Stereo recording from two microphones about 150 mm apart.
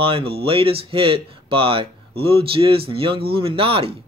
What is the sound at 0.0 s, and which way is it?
Speech, 40° right (ahead or behind).